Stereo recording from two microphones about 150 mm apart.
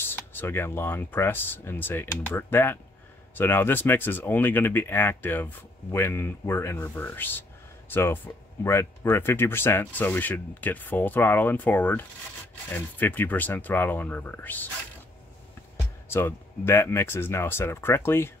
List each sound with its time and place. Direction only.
0.1 s speech: 15° left (ahead or behind)
16.1 s speech: 15° left (ahead or behind)